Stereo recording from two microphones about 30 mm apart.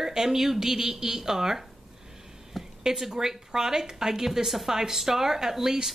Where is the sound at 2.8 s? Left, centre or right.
Centre.